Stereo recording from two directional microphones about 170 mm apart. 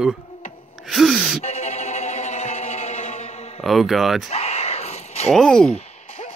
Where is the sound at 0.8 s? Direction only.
Centre (ahead or behind).